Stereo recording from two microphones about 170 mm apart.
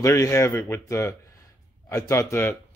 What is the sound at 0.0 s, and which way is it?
Speech, 20° left (ahead or behind).